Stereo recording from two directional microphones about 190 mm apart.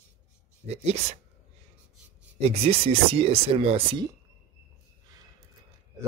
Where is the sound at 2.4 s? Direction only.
30° right (ahead or behind).